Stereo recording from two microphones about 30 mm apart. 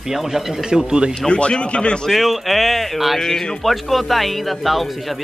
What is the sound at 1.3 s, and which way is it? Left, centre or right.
Speech, left.